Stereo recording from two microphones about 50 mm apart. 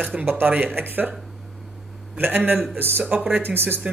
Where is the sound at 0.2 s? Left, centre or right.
Right.